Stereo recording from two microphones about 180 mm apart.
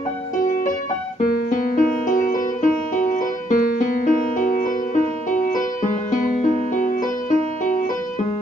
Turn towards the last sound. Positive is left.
turn(degrees=50)  # may be behind; listen again after turning